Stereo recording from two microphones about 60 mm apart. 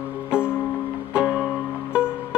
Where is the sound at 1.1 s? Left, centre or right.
Centre.